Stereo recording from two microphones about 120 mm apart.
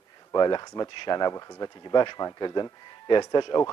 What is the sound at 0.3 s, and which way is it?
Speech, 35° left (ahead or behind).